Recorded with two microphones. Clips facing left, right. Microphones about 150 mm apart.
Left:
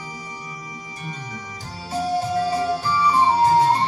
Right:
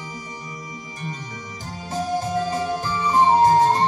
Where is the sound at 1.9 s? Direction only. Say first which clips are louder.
Left 2 dB; 45° right (ahead or behind).